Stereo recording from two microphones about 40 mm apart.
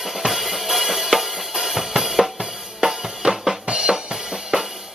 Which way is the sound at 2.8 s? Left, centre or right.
Centre.